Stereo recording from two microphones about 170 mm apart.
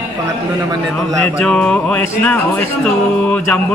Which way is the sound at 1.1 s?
5° left (ahead or behind).